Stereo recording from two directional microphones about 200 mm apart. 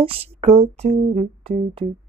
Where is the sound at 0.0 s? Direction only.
30° right (ahead or behind).